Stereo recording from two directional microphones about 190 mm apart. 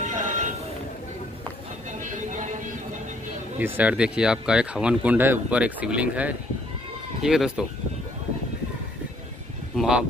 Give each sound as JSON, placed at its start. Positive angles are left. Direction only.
{"t": 0.1, "sound": "train", "side_deg": -40}
{"t": 3.5, "sound": "speech", "side_deg": -10}
{"t": 9.8, "sound": "speech", "side_deg": -5}